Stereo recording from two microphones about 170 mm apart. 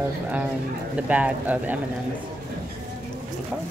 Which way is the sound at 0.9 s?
10° right (ahead or behind).